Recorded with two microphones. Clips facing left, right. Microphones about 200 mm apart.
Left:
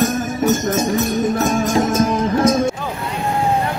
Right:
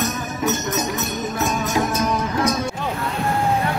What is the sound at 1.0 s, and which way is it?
Music, 50° left (ahead or behind).